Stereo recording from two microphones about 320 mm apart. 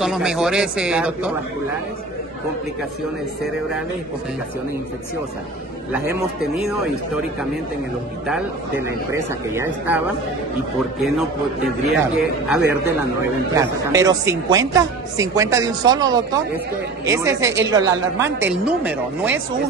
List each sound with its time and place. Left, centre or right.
0.0 s speech: centre
6.0 s speech: centre
8.3 s speech: centre
17.4 s a woman's voice: right
17.6 s speech: centre